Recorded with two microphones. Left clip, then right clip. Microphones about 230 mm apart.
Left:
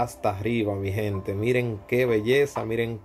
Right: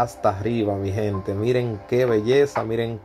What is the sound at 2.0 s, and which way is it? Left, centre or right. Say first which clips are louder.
Speech: right 3 dB; centre.